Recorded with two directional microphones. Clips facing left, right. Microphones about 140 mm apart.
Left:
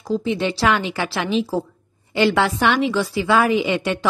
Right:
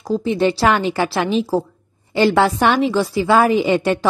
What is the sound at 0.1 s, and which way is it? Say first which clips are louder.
A woman's voice: right 4 dB; 40° right (ahead or behind).